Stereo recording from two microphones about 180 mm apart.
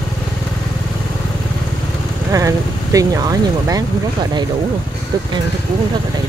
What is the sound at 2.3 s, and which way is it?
Speech, 20° right (ahead or behind).